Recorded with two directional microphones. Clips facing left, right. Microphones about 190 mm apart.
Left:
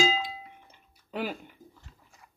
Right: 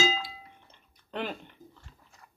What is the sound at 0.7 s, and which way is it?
Tick-tock, 10° left (ahead or behind).